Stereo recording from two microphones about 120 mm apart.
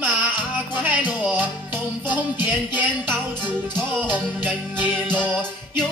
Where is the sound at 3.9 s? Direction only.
15° right (ahead or behind).